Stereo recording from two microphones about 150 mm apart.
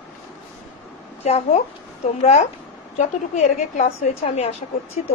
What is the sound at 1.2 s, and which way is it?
A woman's voice, 45° left (ahead or behind).